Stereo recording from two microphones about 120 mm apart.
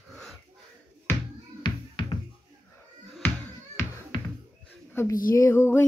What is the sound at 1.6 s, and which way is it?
Music, 40° left (ahead or behind).